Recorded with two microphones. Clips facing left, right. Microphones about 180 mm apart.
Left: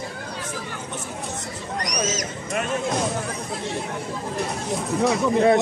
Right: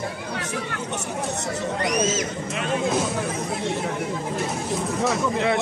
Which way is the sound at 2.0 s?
40° left (ahead or behind).